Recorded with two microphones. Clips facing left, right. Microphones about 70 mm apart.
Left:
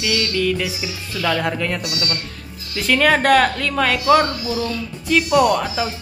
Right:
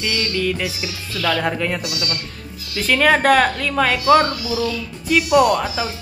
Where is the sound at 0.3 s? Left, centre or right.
Centre.